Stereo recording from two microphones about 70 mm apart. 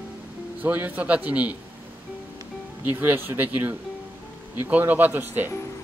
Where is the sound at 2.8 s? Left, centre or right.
Right.